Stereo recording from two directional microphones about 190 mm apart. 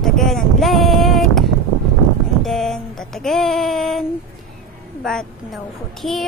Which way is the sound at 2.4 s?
Centre (ahead or behind).